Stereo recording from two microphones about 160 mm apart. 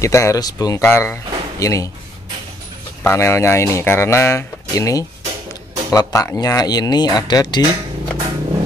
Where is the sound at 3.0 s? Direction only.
15° left (ahead or behind).